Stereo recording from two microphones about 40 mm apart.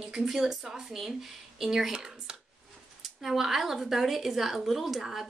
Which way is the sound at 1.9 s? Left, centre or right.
Centre.